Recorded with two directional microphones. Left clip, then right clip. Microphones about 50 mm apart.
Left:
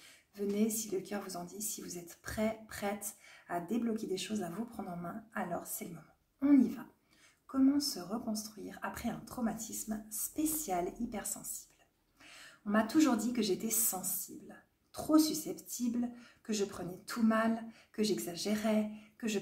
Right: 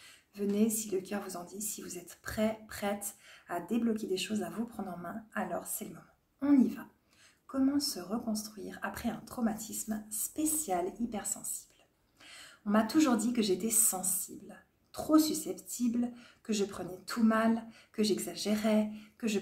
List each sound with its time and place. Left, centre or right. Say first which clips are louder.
0.0 s speech: right 2 dB; right
12.2 s a woman's voice: right 2 dB; right